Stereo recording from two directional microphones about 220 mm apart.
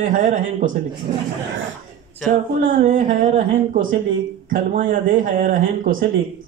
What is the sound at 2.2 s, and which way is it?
Speech, 35° right (ahead or behind).